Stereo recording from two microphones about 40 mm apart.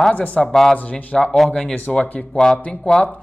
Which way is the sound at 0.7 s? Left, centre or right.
Left.